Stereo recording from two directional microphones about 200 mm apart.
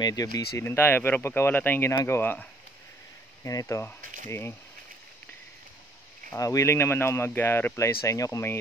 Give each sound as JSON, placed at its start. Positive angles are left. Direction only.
{"t": 0.0, "sound": "speech", "side_deg": 20}
{"t": 3.4, "sound": "speech", "side_deg": 15}
{"t": 6.3, "sound": "speech", "side_deg": 15}